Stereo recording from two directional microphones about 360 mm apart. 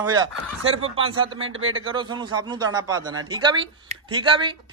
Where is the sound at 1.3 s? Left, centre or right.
Right.